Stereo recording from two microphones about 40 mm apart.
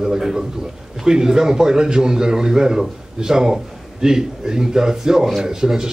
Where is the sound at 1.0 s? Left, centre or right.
Centre.